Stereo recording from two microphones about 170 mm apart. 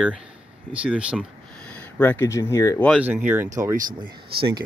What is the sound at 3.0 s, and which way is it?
Speech, 10° right (ahead or behind).